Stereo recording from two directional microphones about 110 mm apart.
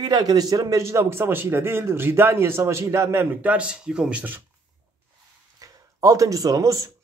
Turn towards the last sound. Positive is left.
turn(degrees=-30)  # may be behind; listen again after turning